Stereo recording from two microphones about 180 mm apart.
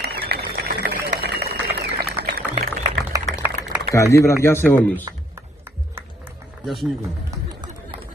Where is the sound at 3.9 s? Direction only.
15° left (ahead or behind).